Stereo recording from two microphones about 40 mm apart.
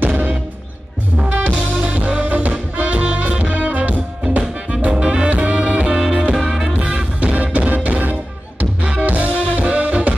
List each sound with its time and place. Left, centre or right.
0.0 s music: right
4.4 s music: right
5.9 s music: centre
6.8 s music: right